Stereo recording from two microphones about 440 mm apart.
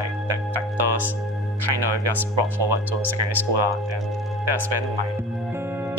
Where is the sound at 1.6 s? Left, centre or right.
Right.